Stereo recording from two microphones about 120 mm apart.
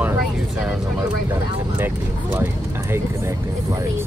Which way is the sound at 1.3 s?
15° right (ahead or behind).